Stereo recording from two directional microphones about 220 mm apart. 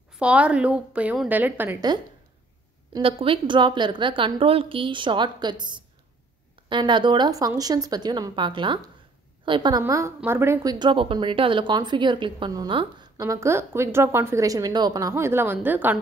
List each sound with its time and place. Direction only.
0.1 s a woman's voice: 5° right (ahead or behind)
2.9 s a woman's voice: 25° right (ahead or behind); by 16.0 s 10° right (ahead or behind)